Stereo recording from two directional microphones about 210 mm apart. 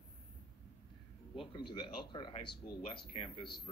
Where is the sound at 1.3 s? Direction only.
25° left (ahead or behind).